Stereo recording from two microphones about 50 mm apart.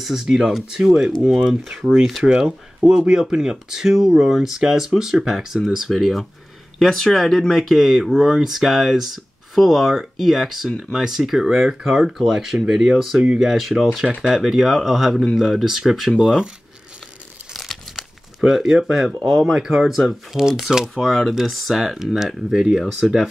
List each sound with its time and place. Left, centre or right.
0.0 s speech: centre
16.2 s speech: centre
17.9 s speech: centre
20.9 s speech: centre